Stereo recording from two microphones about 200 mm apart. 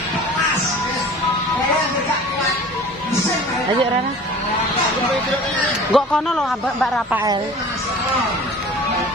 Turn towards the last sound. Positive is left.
turn(degrees=0)  # may be behind; listen again after turning